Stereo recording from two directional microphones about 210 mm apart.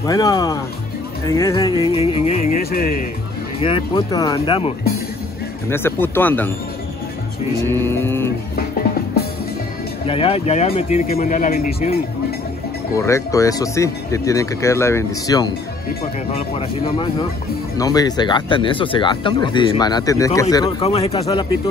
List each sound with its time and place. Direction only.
0.0 s speech: 15° left (ahead or behind)
1.9 s speech: 25° left (ahead or behind)
2.5 s speech: 45° left (ahead or behind)
3.6 s speech: 25° left (ahead or behind)
5.7 s speech: 10° left (ahead or behind)
7.6 s speech: 10° left (ahead or behind)
10.0 s speech: 25° left (ahead or behind)
12.9 s speech: 15° left (ahead or behind)
20.8 s speech: 30° left (ahead or behind)